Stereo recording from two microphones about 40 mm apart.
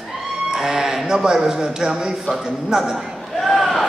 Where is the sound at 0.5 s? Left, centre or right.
Centre.